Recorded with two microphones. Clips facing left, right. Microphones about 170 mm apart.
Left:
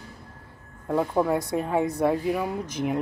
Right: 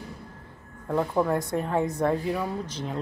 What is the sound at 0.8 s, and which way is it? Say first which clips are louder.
Speech: left 1 dB; 5° left (ahead or behind).